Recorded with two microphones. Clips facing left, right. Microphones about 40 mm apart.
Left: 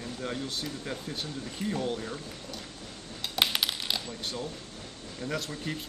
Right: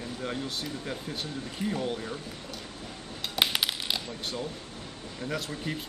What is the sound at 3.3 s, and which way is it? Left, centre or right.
Coin, centre.